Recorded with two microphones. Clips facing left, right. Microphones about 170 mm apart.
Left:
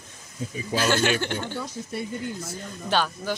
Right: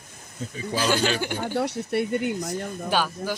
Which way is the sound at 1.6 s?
70° right (ahead or behind).